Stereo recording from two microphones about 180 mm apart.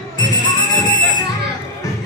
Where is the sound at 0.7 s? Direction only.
25° left (ahead or behind).